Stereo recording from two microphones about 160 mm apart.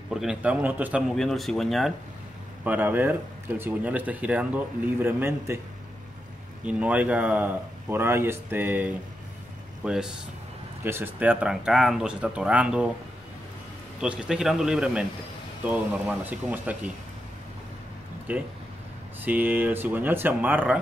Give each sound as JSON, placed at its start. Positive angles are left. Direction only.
{"t": 0.1, "sound": "speech", "side_deg": -5}
{"t": 1.1, "sound": "speech", "side_deg": 0}
{"t": 2.6, "sound": "speech", "side_deg": -10}
{"t": 6.6, "sound": "speech", "side_deg": -10}
{"t": 14.0, "sound": "speech", "side_deg": -5}
{"t": 18.3, "sound": "speech", "side_deg": -10}